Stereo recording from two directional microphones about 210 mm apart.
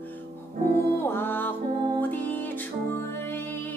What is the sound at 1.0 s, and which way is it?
Music, 10° left (ahead or behind).